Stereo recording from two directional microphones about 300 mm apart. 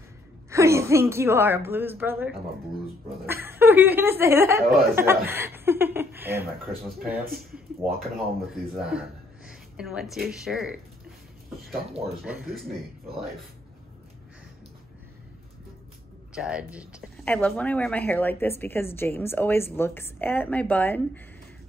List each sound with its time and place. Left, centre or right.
0.5 s a woman's voice: centre
3.4 s speech: centre
7.1 s a man's voice: right
7.3 s speech: centre
16.3 s a woman's voice: centre